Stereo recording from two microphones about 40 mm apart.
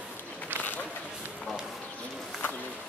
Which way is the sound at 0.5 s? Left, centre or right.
Left.